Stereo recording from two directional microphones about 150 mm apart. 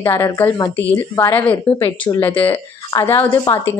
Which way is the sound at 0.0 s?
15° left (ahead or behind).